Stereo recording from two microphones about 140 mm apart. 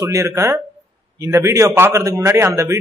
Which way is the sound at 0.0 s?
20° right (ahead or behind).